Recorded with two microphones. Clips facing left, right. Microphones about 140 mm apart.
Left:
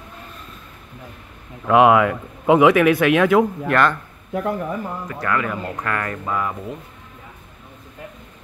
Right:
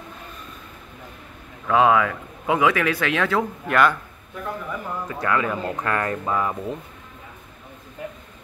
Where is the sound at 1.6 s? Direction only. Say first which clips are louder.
Left 4 dB; 15° left (ahead or behind).